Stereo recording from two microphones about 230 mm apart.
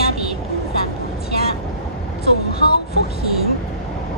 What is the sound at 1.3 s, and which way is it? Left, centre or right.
Vehicle, left.